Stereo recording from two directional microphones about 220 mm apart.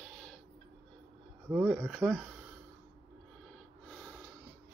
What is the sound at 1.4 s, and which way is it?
Speech, centre (ahead or behind).